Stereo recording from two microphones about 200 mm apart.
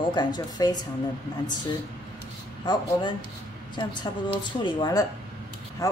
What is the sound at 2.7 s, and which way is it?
Speech, 25° left (ahead or behind).